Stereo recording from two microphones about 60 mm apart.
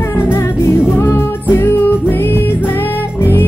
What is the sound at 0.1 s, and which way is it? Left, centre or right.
Music, left.